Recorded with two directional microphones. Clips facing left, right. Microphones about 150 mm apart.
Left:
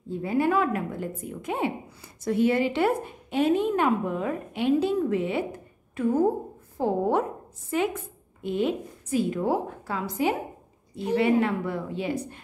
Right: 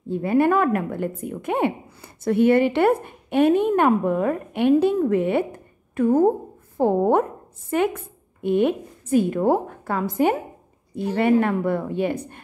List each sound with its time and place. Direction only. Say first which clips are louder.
0.1 s a woman's voice: right 5 dB; 65° right (ahead or behind)